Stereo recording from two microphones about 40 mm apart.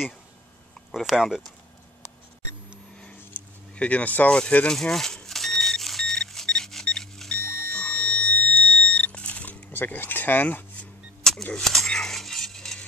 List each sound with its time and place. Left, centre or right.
0.9 s speech: centre
3.7 s speech: left
4.3 s speech: left
4.6 s vehicle: centre
7.2 s music: left
9.3 s a sound: left
9.7 s speech: left
11.3 s a sound: centre